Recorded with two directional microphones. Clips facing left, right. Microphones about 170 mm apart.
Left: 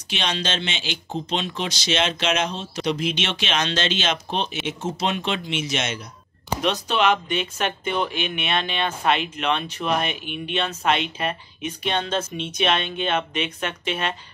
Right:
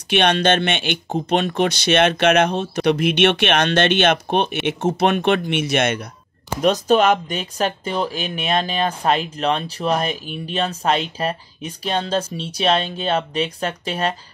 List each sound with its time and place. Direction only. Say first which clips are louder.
0.1 s speech: right 10 dB; 60° right (ahead or behind)
6.5 s speech: right 7 dB; 45° right (ahead or behind)